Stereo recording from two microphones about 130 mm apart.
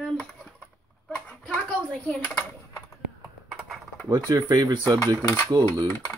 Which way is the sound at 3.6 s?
Centre (ahead or behind).